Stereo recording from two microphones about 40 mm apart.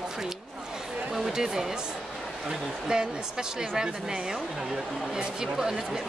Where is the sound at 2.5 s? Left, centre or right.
Centre.